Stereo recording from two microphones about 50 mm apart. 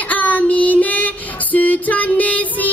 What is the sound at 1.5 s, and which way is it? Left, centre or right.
Music, left.